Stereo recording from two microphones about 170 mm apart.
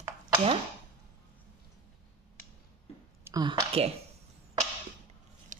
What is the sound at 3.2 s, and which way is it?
Speech, 25° right (ahead or behind).